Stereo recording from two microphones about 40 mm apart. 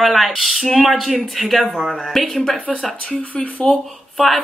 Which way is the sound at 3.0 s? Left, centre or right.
Left.